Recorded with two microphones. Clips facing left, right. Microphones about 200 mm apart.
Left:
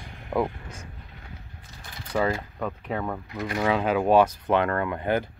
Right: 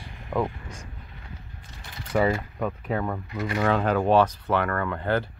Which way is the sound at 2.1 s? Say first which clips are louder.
Right 2 dB; 5° right (ahead or behind).